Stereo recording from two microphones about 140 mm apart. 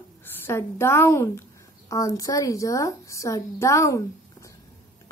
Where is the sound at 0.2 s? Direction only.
15° left (ahead or behind).